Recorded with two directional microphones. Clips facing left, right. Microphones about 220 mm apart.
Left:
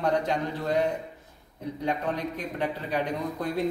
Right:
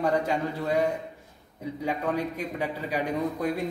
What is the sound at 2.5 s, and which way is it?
Speech, 10° right (ahead or behind).